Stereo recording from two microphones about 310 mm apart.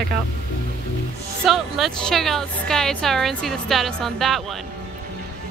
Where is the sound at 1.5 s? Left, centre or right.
Centre.